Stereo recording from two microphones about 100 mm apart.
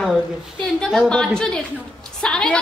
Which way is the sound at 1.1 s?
5° left (ahead or behind).